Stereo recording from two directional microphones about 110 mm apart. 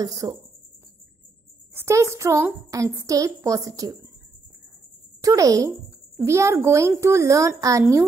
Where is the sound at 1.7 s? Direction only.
25° right (ahead or behind).